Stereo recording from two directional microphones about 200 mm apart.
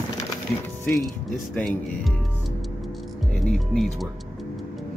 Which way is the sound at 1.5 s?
5° left (ahead or behind).